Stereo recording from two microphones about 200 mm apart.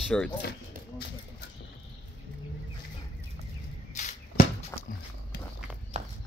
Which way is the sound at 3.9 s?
35° left (ahead or behind).